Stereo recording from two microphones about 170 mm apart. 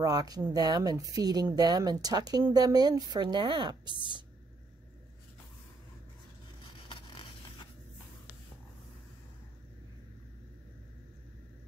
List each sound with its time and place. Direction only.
0.0 s speech: 20° right (ahead or behind)
6.9 s zipper: 30° left (ahead or behind)